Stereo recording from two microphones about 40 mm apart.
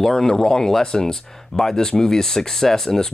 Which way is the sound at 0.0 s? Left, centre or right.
Centre.